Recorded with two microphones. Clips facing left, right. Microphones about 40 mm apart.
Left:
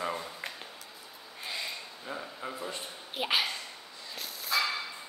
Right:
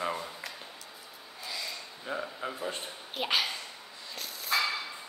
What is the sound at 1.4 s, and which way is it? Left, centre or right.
Snort, left.